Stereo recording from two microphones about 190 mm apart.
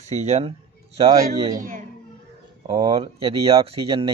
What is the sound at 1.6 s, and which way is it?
Music, 45° right (ahead or behind).